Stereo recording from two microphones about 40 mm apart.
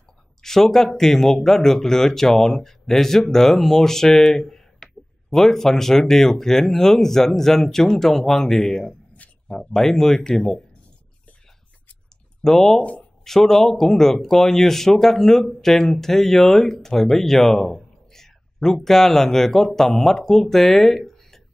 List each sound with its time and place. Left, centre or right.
0.4 s speech: centre
4.8 s a sound: centre
5.3 s speech: centre
12.4 s speech: centre